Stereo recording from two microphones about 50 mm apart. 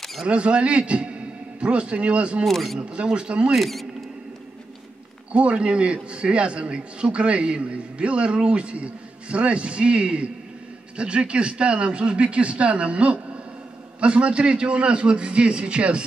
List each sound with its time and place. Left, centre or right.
0.3 s a man's voice: right
2.4 s speech: centre
2.8 s a man's voice: right
3.5 s speech: centre
5.3 s a man's voice: right